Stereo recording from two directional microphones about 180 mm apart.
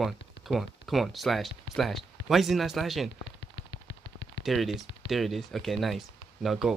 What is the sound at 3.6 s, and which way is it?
Gunshot, 75° left (ahead or behind).